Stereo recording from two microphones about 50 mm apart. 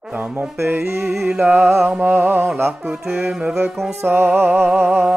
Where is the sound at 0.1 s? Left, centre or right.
Right.